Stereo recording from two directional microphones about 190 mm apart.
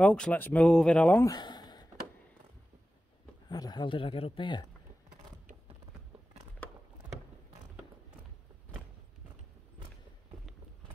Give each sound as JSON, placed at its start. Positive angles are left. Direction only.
{"t": 0.0, "sound": "speech", "side_deg": 5}
{"t": 1.3, "sound": "a sound", "side_deg": 20}
{"t": 3.4, "sound": "speech", "side_deg": 20}